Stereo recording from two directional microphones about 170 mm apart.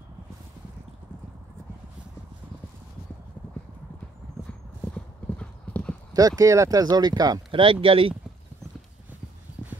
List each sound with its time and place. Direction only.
4.5 s clip-clop: 5° left (ahead or behind)
6.1 s speech: 20° right (ahead or behind)